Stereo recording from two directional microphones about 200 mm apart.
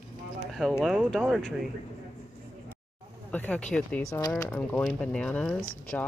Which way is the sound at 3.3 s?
5° left (ahead or behind).